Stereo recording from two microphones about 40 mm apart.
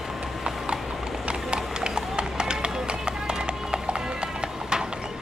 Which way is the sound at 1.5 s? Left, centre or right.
Right.